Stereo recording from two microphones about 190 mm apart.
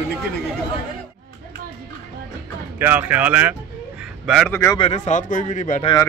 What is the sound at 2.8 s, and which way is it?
Speech, 10° right (ahead or behind).